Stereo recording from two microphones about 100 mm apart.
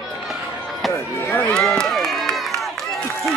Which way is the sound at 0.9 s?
25° left (ahead or behind).